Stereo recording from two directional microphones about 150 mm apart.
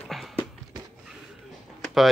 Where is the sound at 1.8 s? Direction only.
Centre (ahead or behind).